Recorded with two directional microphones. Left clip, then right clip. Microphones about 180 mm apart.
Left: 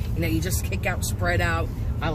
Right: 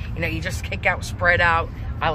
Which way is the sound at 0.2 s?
15° left (ahead or behind).